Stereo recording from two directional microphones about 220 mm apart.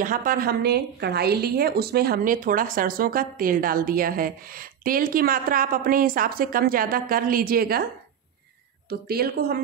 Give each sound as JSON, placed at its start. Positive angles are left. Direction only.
{"t": 0.0, "sound": "a woman's voice", "side_deg": -40}
{"t": 8.8, "sound": "speech", "side_deg": -45}